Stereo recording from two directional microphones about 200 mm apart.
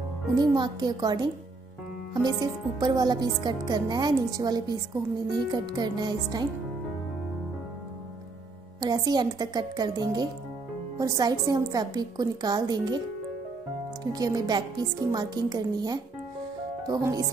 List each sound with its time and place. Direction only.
0.4 s speech: 20° right (ahead or behind)
8.8 s speech: 20° right (ahead or behind)
14.1 s speech: 20° right (ahead or behind)